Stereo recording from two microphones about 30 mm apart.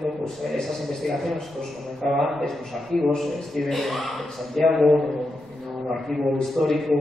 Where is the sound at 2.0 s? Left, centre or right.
Centre.